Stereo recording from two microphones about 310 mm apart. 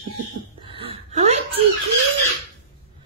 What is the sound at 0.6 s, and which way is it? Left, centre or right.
Whimper, centre.